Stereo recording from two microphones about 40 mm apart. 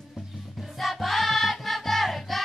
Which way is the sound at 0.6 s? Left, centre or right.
Centre.